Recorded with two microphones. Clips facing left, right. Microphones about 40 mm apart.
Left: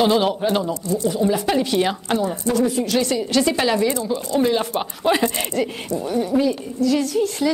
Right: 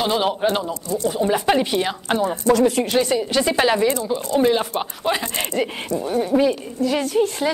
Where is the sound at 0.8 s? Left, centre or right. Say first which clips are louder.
Left 1 dB; centre.